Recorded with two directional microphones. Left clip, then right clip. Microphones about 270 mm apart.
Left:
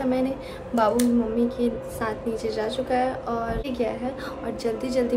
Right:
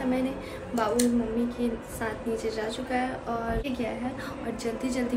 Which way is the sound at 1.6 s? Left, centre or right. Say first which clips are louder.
Left 5 dB; centre.